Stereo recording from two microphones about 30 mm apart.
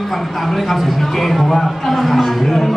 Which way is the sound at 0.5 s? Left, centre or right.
Centre.